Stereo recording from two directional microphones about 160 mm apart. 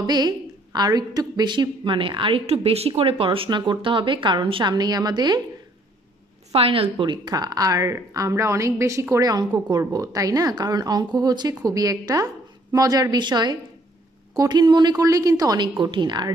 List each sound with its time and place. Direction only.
0.0 s a woman's voice: 25° right (ahead or behind)
6.5 s a woman's voice: 35° right (ahead or behind)